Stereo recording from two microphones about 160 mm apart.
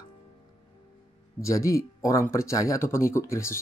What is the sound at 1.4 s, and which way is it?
Speech, 20° left (ahead or behind).